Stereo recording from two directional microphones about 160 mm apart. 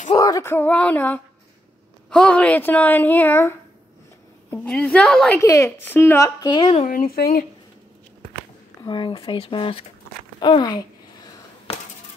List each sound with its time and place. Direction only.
0.1 s speech: 20° left (ahead or behind); by 5.4 s 5° left (ahead or behind)
5.4 s a woman's voice: 20° left (ahead or behind)
6.8 s speech: 60° left (ahead or behind)
8.8 s a woman's voice: 30° left (ahead or behind)